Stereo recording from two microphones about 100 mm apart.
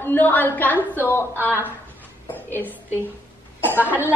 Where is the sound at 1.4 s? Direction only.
20° right (ahead or behind).